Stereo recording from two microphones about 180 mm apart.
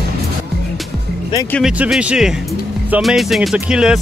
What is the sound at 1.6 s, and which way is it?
Speech, 5° right (ahead or behind).